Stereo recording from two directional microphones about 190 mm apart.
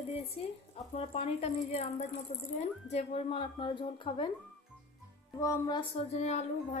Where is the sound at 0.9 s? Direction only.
35° left (ahead or behind).